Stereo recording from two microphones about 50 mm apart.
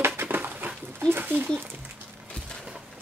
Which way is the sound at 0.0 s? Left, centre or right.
Right.